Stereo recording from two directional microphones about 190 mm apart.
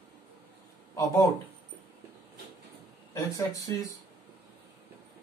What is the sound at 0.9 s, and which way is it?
Speech, 15° left (ahead or behind).